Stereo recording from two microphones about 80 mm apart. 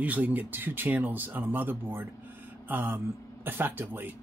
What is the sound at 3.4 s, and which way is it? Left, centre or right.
Speech, right.